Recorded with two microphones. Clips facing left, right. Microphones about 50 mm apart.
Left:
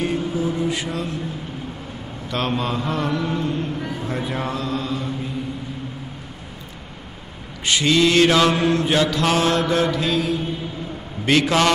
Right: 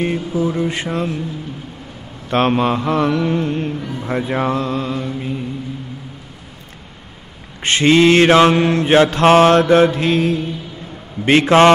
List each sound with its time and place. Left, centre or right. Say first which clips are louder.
0.0 s mantra: right 3 dB; right
2.2 s mantra: right 8 dB; right
7.6 s mantra: right 6 dB; right